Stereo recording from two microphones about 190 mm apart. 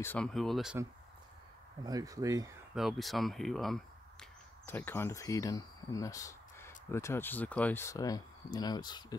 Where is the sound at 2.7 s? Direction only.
Centre (ahead or behind).